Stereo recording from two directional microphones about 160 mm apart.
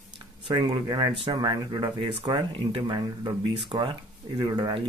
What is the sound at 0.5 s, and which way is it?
Speech, 30° right (ahead or behind).